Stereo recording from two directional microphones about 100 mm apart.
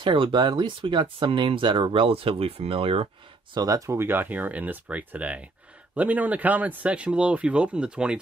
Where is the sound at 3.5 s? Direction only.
35° right (ahead or behind).